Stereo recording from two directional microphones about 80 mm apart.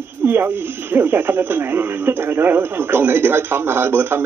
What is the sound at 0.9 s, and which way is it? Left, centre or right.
Speech, right.